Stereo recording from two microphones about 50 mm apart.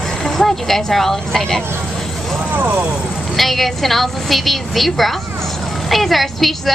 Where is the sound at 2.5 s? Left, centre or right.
Right.